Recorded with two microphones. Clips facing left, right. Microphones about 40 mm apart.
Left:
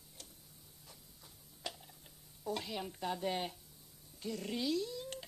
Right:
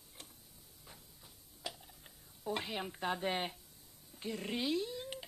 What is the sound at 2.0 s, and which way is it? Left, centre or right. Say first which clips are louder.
Speech: even; right.